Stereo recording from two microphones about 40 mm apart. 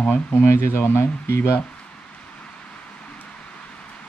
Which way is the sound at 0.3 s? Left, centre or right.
Left.